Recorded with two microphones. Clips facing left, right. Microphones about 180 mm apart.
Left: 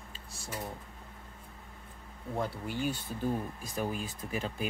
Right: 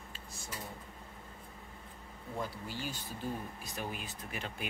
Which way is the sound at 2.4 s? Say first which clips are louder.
Left 6 dB; 55° left (ahead or behind).